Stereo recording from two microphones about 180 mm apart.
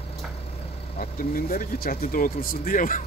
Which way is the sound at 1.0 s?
50° left (ahead or behind).